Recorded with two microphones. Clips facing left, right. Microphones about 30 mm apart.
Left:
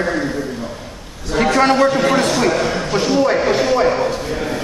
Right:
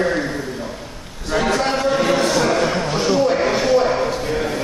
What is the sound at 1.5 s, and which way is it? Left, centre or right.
Speech, left.